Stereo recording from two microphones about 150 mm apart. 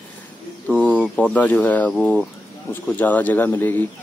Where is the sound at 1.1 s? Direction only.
10° left (ahead or behind).